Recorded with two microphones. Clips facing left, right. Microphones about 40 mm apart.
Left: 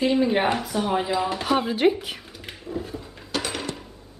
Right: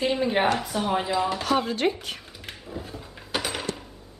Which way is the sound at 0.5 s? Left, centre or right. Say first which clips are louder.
Left 1 dB; centre.